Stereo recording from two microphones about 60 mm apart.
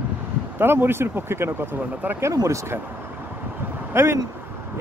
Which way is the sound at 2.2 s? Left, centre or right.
Right.